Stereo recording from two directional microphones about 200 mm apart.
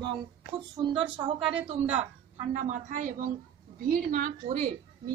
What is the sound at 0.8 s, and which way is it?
A woman's voice, 25° right (ahead or behind).